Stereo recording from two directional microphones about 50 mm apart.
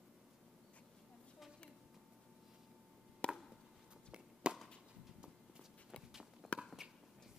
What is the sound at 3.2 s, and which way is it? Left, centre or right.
Chop, centre.